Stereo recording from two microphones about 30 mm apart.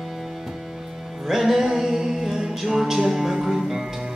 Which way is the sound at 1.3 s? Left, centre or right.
Centre.